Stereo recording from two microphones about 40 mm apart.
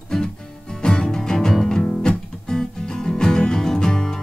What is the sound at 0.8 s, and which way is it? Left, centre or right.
Music, centre.